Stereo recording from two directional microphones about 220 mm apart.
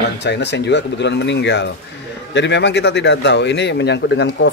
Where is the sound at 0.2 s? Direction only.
50° left (ahead or behind).